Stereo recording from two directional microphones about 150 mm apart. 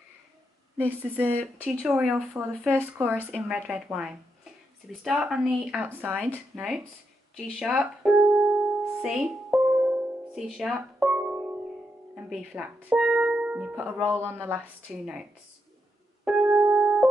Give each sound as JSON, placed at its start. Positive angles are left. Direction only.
{"t": 0.7, "sound": "a woman's voice", "side_deg": -10}
{"t": 2.6, "sound": "a woman's voice", "side_deg": -15}
{"t": 9.0, "sound": "music", "side_deg": -5}
{"t": 12.3, "sound": "a woman's voice", "side_deg": -5}
{"t": 16.3, "sound": "music", "side_deg": -10}